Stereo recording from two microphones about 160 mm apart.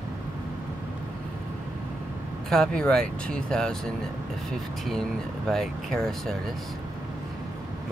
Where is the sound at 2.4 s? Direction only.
5° left (ahead or behind).